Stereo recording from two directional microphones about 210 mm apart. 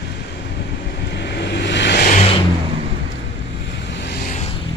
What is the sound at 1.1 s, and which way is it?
Vehicle, 55° left (ahead or behind).